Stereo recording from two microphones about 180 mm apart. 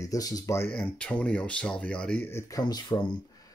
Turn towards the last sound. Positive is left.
turn(degrees=20)  # may be behind; listen again after turning